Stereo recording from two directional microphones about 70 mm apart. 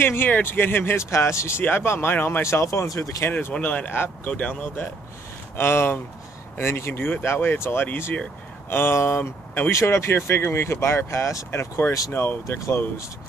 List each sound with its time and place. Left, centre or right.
0.0 s speech: left
1.6 s speech: left
3.3 s speech: left
4.3 s speech: centre
5.6 s speech: left
12.1 s speech: left